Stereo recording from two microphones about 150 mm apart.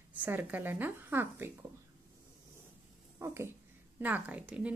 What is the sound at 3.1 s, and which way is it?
Speech, 15° right (ahead or behind).